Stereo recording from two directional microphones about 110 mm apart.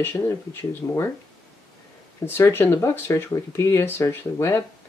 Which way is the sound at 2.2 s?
20° left (ahead or behind).